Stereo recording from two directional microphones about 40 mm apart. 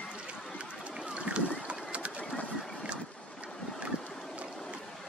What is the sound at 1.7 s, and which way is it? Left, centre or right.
Bird, right.